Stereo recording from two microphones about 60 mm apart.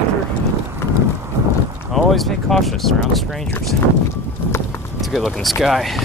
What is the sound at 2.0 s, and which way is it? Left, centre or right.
Speech, centre.